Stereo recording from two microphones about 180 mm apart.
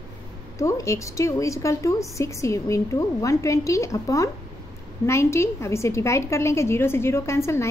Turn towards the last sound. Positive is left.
turn(degrees=15)  # may be behind; listen again after turning